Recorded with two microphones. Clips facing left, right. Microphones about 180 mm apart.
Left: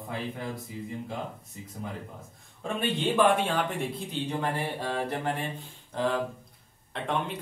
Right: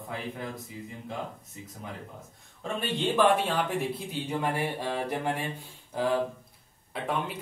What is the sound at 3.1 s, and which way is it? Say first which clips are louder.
Speech: even; centre (ahead or behind).